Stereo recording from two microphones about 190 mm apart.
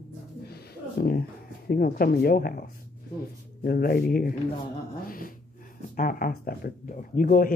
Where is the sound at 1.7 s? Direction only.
55° left (ahead or behind).